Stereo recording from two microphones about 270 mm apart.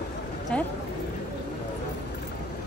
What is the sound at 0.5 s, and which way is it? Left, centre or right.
Speech, centre.